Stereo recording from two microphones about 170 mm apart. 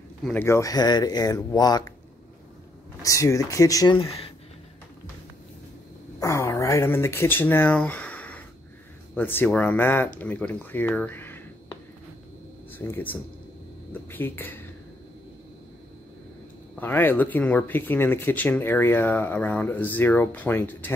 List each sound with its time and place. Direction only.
0.2 s speech: 10° left (ahead or behind)
3.0 s speech: 20° left (ahead or behind)
6.1 s speech: 20° left (ahead or behind)
16.7 s speech: 10° left (ahead or behind)